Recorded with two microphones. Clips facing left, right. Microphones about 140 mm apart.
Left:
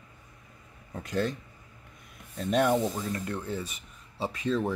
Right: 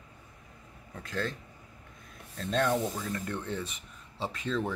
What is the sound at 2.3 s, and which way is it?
Speech, 15° left (ahead or behind).